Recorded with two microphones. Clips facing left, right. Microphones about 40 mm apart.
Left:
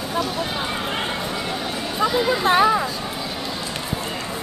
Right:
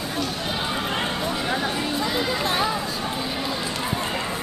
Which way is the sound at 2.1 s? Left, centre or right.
Centre.